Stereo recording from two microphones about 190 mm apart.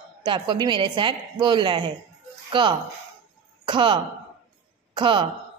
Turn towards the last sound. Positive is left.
turn(degrees=-25)  # may be behind; listen again after turning